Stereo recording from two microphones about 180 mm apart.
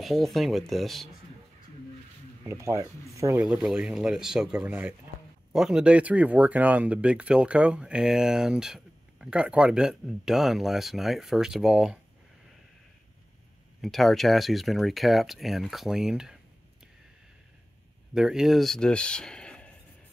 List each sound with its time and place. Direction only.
0.0 s speech: centre (ahead or behind)
2.4 s speech: 15° right (ahead or behind)
3.4 s speech: 5° right (ahead or behind)
13.7 s speech: centre (ahead or behind)
18.1 s speech: 5° right (ahead or behind)